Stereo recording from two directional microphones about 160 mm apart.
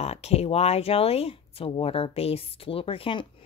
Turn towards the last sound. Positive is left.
turn(degrees=35)  # may be behind; listen again after turning